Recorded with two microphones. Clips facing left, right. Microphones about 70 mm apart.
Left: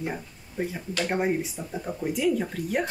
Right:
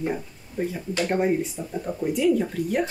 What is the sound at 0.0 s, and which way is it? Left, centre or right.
Speech, centre.